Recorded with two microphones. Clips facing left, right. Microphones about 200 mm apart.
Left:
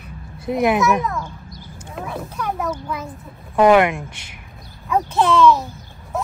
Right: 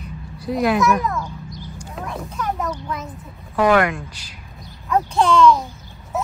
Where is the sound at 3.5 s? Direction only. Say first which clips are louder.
Left 3 dB; 25° left (ahead or behind).